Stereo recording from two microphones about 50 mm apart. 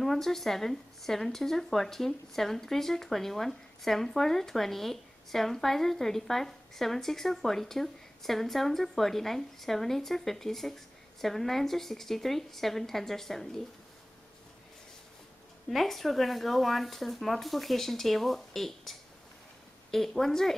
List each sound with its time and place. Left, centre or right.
0.0 s speech: centre
15.7 s speech: centre